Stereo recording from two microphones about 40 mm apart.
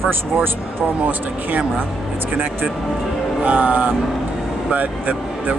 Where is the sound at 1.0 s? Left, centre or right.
Right.